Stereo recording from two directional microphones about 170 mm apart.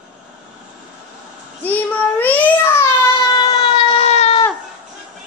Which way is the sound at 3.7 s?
35° left (ahead or behind).